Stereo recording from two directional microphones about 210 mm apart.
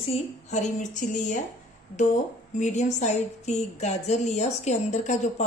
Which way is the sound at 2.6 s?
35° left (ahead or behind).